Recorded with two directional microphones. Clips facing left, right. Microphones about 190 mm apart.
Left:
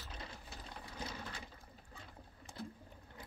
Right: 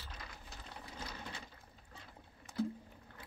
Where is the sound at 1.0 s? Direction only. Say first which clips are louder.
Left 2 dB; 15° left (ahead or behind).